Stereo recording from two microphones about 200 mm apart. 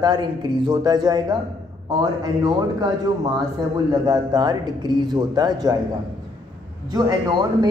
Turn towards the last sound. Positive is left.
turn(degrees=-20)  # may be behind; listen again after turning